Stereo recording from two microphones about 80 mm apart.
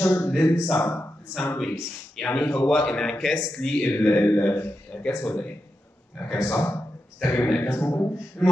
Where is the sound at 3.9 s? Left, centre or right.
Left.